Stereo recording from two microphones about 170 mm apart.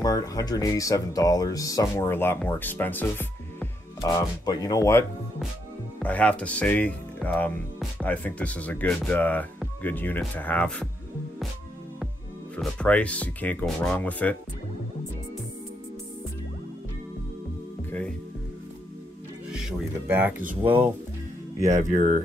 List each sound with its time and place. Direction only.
0.0 s speech: 20° left (ahead or behind)
4.0 s speech: 20° left (ahead or behind)
5.9 s speech: 10° left (ahead or behind)
12.5 s speech: 10° left (ahead or behind)
20.1 s speech: 10° right (ahead or behind)
21.5 s speech: 45° right (ahead or behind)